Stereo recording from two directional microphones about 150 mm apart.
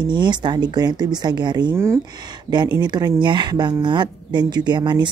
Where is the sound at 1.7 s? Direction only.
15° right (ahead or behind).